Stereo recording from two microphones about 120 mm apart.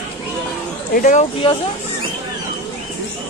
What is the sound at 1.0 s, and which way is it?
Speech, 90° left.